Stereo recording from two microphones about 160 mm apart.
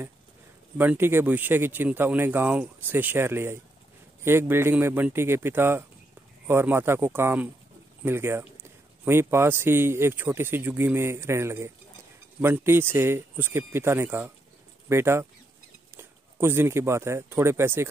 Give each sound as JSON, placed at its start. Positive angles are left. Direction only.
{"t": 0.7, "sound": "speech", "side_deg": -15}